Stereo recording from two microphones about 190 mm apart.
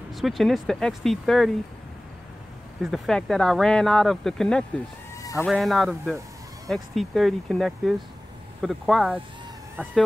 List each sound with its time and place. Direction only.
0.1 s speech: centre (ahead or behind)
2.8 s speech: centre (ahead or behind)
5.2 s sheep: 15° left (ahead or behind)
5.5 s speech: centre (ahead or behind)